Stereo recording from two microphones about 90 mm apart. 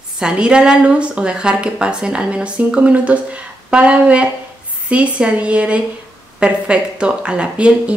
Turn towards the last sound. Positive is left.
turn(degrees=-10)  # may be behind; listen again after turning